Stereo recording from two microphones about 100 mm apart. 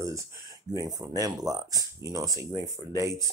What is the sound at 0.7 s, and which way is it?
Speech, 40° right (ahead or behind).